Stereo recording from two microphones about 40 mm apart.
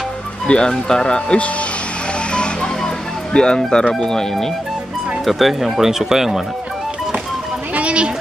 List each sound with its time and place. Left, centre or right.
0.5 s speech: left
3.3 s speech: centre
5.2 s speech: centre
7.7 s a sound: right